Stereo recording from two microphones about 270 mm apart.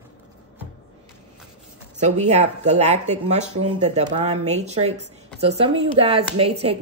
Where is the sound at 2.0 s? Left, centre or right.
Right.